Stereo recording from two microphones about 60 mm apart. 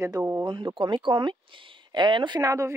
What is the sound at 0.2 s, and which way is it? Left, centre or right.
Speech, right.